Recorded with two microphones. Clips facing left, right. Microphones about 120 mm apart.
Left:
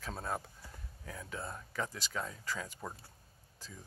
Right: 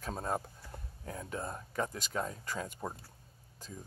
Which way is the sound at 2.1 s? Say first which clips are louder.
Right 4 dB; 35° right (ahead or behind).